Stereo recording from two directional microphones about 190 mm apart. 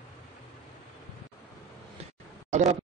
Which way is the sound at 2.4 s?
40° right (ahead or behind).